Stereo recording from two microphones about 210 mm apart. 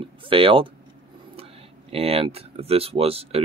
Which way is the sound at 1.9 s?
30° right (ahead or behind).